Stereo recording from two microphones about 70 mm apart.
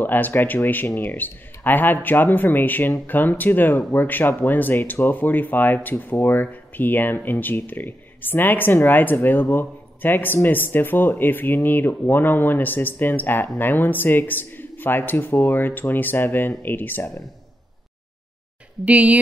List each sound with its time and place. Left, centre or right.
0.0 s speech: left
18.9 s speech: right